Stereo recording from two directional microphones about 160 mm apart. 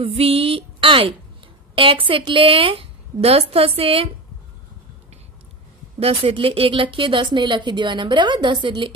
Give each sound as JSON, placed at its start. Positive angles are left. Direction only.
{"t": 0.0, "sound": "a woman's voice", "side_deg": -40}
{"t": 5.9, "sound": "a woman's voice", "side_deg": -35}